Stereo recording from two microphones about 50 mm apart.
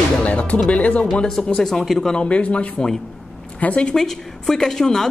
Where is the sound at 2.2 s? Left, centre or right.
Left.